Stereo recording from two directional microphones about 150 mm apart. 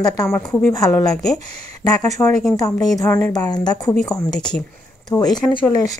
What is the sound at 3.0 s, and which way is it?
Speech, 15° left (ahead or behind).